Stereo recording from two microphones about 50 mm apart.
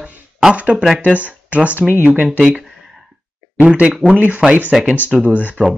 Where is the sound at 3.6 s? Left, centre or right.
Right.